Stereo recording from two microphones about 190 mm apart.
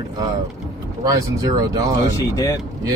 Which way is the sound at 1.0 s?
20° right (ahead or behind).